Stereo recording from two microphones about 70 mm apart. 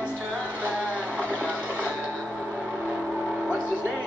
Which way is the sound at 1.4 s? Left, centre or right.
Right.